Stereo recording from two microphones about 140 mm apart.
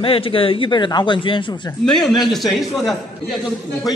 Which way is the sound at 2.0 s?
Centre (ahead or behind).